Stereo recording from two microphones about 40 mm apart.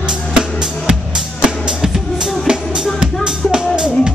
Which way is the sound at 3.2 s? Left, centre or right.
Centre.